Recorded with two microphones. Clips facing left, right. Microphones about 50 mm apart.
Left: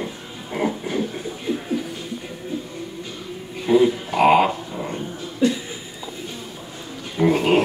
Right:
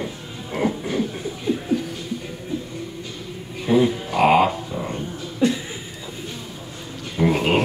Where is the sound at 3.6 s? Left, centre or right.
Centre.